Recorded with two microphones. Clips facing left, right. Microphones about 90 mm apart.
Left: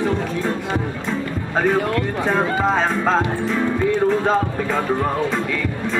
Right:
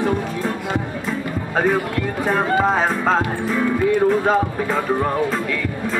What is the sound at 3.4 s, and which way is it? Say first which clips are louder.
Music: right 1 dB; 10° right (ahead or behind).